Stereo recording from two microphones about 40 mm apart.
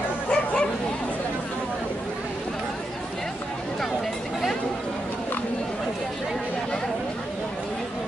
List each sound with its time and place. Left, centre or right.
0.3 s bow-wow: left